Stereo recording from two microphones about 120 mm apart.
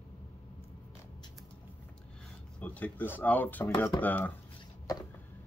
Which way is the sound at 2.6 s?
15° left (ahead or behind).